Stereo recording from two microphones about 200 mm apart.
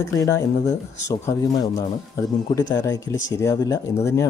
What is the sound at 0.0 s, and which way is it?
Speech, 15° left (ahead or behind).